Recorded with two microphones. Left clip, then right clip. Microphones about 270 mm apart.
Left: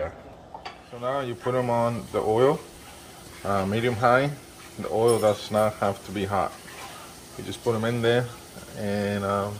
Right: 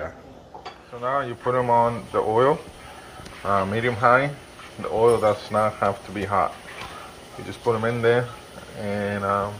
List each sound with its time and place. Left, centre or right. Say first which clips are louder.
1.0 s speech: right 3 dB; centre
7.6 s speech: right 4 dB; centre